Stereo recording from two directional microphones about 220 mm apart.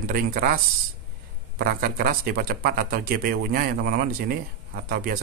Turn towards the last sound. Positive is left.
turn(degrees=-40)  # may be behind; listen again after turning